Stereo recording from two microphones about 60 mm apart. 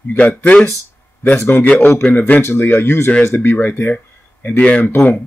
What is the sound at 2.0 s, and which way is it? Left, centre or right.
Speech, left.